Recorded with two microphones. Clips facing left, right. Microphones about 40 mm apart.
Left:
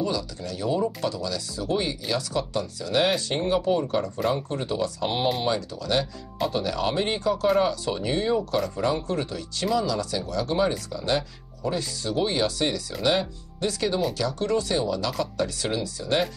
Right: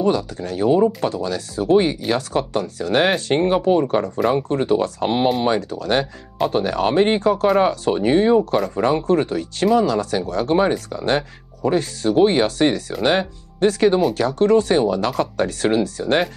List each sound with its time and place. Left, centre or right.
0.0 s speech: right